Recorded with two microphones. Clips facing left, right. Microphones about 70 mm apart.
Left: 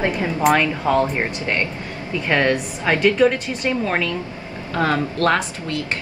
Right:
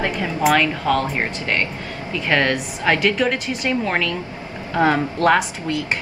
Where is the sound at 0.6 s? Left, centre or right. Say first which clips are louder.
Left 1 dB; left.